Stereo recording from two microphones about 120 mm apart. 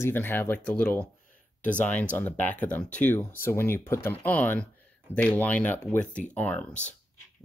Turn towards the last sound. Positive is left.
turn(degrees=15)  # may be behind; listen again after turning